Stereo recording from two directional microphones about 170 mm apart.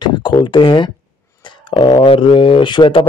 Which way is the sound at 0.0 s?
25° left (ahead or behind).